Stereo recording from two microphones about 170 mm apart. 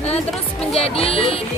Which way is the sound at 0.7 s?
35° left (ahead or behind).